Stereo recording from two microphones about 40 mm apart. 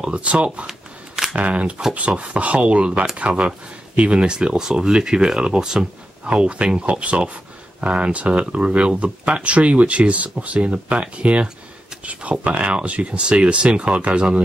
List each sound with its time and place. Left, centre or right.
0.0 s speech: right
0.7 s shuffling cards: centre
1.3 s speech: right